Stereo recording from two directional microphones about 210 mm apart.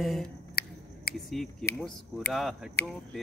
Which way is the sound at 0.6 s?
50° left (ahead or behind).